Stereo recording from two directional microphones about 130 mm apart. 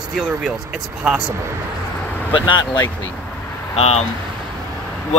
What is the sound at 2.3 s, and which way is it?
Speech, 35° left (ahead or behind).